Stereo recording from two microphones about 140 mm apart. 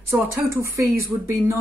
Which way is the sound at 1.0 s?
15° right (ahead or behind).